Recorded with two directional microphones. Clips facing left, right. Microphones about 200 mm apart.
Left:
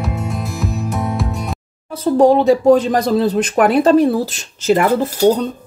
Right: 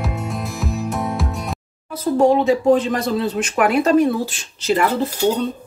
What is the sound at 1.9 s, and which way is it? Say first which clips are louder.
Speech: left 4 dB; 30° left (ahead or behind).